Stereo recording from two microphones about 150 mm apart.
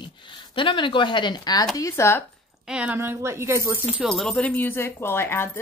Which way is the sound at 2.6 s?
5° right (ahead or behind).